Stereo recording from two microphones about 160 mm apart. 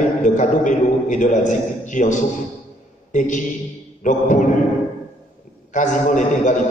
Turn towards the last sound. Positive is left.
turn(degrees=50)  # may be behind; listen again after turning